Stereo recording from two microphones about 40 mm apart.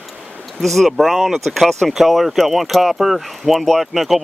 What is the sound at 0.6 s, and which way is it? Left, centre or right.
Speech, centre.